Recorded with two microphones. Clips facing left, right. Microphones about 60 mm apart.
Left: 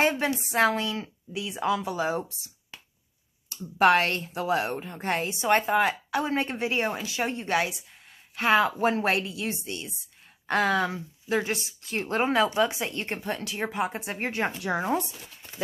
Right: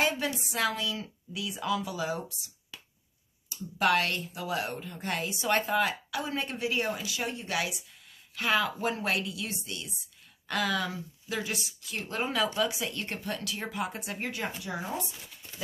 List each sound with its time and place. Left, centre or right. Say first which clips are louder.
0.0 s a woman's voice: left 4 dB; left
14.6 s speech: left 8 dB; left